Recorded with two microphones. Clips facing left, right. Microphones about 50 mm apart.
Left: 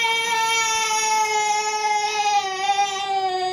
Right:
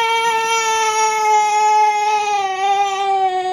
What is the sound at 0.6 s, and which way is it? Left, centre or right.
Cat, right.